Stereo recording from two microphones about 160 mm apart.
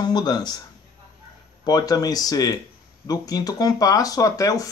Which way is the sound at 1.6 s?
25° left (ahead or behind).